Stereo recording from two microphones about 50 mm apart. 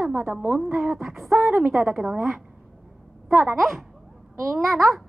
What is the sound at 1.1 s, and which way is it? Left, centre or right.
A woman's voice, centre.